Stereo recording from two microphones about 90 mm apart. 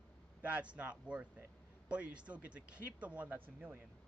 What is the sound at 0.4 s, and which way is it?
Speech, 15° right (ahead or behind).